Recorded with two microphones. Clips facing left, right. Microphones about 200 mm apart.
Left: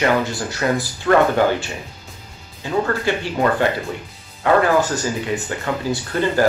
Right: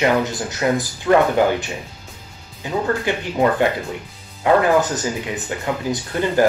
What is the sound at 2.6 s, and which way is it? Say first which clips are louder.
Speech: left 1 dB; 15° right (ahead or behind).